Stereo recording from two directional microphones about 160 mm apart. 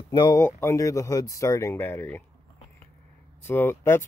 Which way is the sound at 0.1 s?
30° left (ahead or behind).